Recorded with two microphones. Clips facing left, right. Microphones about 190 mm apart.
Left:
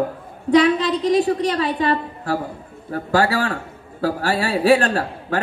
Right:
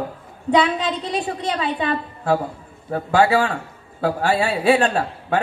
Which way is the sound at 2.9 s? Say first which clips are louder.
Right 2 dB; 40° left (ahead or behind).